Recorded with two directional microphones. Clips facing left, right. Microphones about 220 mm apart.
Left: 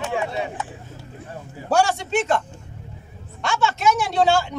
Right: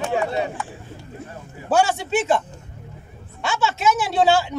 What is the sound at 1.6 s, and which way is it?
Speech, 5° right (ahead or behind).